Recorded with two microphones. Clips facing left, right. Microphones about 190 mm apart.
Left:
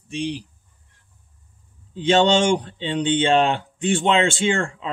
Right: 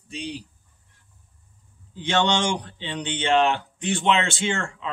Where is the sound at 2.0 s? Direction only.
25° left (ahead or behind).